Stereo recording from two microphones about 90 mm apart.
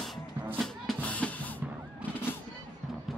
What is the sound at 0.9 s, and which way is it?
Music, 15° left (ahead or behind).